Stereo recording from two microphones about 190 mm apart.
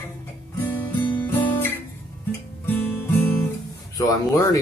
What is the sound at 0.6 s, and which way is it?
Guitar, 10° left (ahead or behind).